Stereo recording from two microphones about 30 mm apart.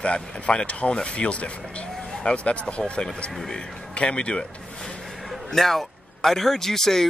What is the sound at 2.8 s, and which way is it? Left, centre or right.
Speech, left.